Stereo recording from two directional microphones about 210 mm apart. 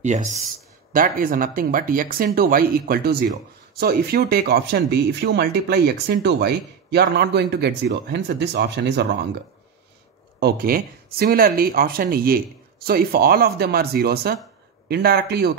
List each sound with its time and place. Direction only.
0.0 s speech: 35° right (ahead or behind); by 9.3 s 50° right (ahead or behind)
10.4 s speech: 45° right (ahead or behind)